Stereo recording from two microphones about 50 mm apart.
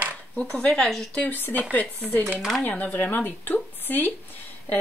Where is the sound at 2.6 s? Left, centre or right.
Left.